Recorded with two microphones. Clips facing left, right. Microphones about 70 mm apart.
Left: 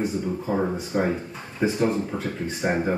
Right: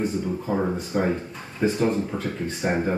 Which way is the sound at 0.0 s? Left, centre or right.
Centre.